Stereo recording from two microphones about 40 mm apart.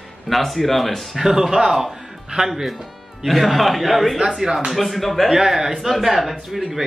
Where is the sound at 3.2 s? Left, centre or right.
Centre.